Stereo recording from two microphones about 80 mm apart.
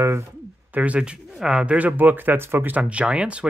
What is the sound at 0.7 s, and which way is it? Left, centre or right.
A man's voice, centre.